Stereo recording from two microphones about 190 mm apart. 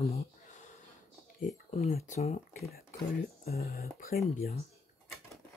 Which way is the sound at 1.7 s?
40° left (ahead or behind).